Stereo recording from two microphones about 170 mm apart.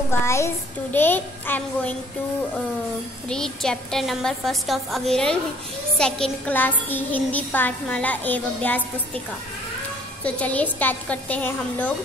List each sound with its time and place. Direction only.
0.1 s child singing: 15° left (ahead or behind)
3.3 s a woman's voice: 5° left (ahead or behind)
5.9 s child singing: 5° left (ahead or behind)
10.2 s child singing: 10° left (ahead or behind)